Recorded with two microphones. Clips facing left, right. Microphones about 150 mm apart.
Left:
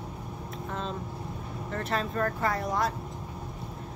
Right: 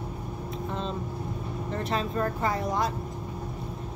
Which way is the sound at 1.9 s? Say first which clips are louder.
Right 1 dB; centre (ahead or behind).